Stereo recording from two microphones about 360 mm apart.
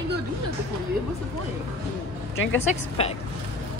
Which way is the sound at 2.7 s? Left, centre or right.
Centre.